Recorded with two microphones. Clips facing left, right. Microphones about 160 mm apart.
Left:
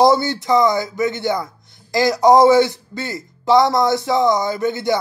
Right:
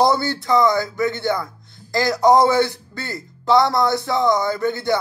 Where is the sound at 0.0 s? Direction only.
20° left (ahead or behind).